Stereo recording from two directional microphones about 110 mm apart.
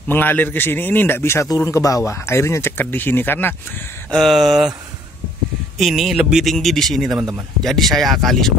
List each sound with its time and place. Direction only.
0.1 s a man's voice: 15° left (ahead or behind)
4.1 s speech: centre (ahead or behind)
5.8 s speech: centre (ahead or behind)